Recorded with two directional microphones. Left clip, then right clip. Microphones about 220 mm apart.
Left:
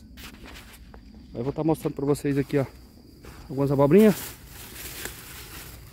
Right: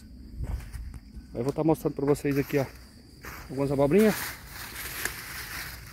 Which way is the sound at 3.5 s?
40° left (ahead or behind).